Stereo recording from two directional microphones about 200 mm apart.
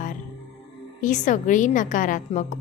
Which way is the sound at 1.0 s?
40° left (ahead or behind).